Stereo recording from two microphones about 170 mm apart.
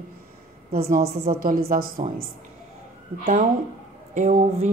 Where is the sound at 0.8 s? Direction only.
65° right (ahead or behind).